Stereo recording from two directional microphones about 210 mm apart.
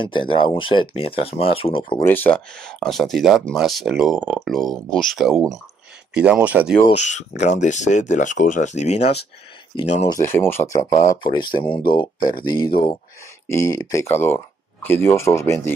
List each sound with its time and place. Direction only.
0.0 s speech: 25° left (ahead or behind)
2.0 s speech: 10° left (ahead or behind)
6.8 s speech: 35° left (ahead or behind)
10.0 s speech: 15° left (ahead or behind)